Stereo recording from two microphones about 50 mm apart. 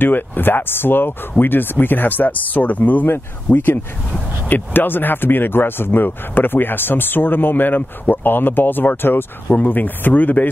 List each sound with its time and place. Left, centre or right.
0.0 s speech: left